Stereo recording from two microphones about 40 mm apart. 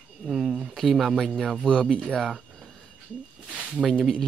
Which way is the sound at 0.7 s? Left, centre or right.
Centre.